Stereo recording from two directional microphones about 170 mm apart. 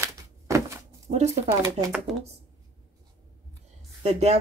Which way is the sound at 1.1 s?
40° right (ahead or behind).